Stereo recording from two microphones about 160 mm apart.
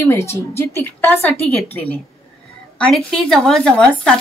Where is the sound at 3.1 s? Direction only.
5° left (ahead or behind).